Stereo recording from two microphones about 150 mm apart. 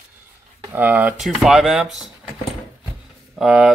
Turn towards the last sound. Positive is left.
turn(degrees=-5)  # may be behind; listen again after turning